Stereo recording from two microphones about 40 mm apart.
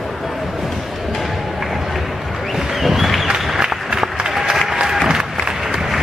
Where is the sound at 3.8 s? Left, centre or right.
Centre.